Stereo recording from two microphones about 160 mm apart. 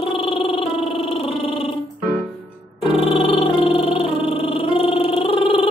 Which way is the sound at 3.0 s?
35° left (ahead or behind).